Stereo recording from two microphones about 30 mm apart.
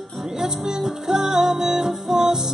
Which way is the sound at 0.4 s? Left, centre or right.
Right.